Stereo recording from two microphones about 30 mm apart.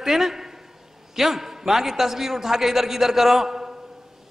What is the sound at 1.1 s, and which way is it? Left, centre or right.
A man's voice, centre.